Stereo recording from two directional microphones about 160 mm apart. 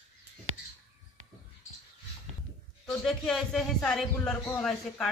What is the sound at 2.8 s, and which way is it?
A man's voice, 5° left (ahead or behind).